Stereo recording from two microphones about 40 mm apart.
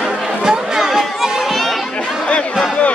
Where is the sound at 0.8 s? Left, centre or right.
Centre.